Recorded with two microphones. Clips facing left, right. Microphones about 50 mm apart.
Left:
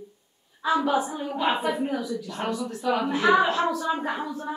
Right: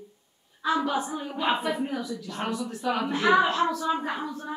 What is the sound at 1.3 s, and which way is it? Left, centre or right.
Speech, centre.